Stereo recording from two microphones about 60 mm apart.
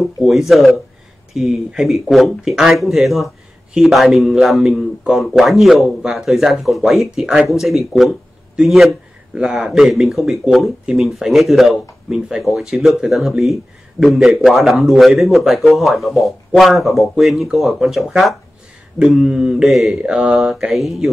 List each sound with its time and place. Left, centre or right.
0.0 s a man's voice: centre
9.3 s a man's voice: centre
9.7 s speech: centre